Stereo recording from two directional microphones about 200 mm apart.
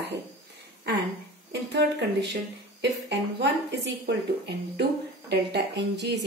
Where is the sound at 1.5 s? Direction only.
60° right (ahead or behind).